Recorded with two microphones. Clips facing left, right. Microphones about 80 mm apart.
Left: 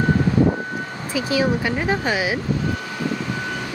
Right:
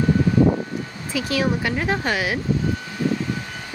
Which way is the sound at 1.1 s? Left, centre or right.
Centre.